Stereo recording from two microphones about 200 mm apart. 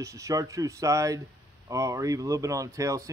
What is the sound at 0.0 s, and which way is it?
A man's voice, 15° right (ahead or behind).